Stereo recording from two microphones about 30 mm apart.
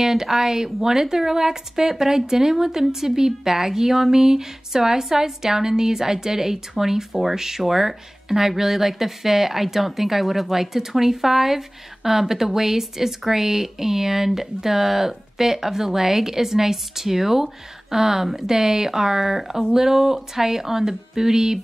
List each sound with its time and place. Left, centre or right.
0.0 s speech: centre